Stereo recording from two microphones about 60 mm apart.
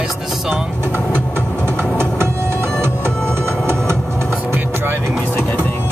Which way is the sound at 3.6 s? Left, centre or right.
Right.